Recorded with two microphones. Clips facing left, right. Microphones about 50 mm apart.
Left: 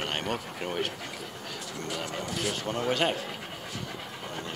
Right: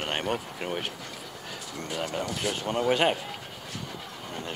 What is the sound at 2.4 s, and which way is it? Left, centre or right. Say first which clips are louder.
Speech: right 1 dB; right.